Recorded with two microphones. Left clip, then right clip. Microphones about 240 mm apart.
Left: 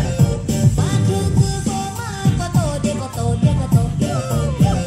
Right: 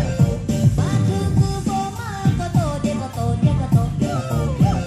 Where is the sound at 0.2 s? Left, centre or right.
Left.